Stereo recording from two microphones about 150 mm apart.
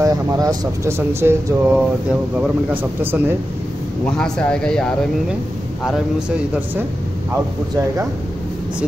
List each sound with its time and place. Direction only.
0.0 s a man's voice: 25° right (ahead or behind)
4.0 s speech: 5° left (ahead or behind)
5.9 s a man's voice: 5° right (ahead or behind)